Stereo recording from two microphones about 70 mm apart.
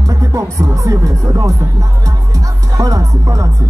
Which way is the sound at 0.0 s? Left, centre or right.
Right.